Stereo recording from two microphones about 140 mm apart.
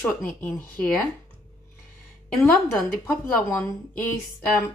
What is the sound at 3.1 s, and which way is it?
Speech, 15° left (ahead or behind).